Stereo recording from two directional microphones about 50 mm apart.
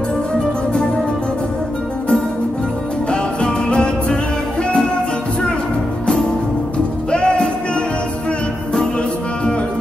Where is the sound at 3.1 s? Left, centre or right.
Centre.